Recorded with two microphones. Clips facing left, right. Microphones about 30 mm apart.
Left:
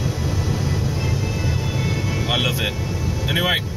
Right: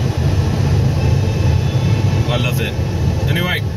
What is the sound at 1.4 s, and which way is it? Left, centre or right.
Vehicle, right.